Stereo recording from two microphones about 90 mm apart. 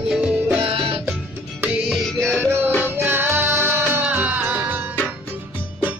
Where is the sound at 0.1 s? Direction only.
10° right (ahead or behind).